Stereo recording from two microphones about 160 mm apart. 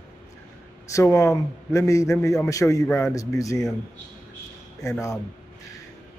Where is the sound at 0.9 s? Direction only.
20° left (ahead or behind).